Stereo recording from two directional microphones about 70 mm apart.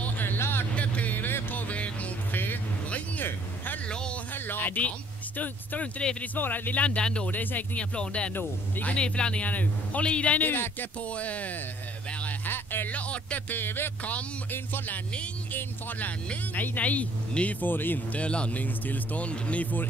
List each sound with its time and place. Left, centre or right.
0.0 s vehicle: left
0.7 s music: left
3.9 s a sound: centre
4.3 s music: left
5.4 s speech: left
7.2 s music: left
8.4 s speech: left
8.9 s speech: centre
12.1 s a sound: centre
12.4 s music: left
14.1 s speech: left